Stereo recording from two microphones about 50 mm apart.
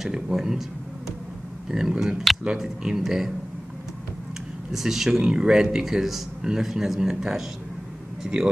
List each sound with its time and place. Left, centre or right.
0.0 s speech: centre
1.7 s speech: centre
4.6 s speech: centre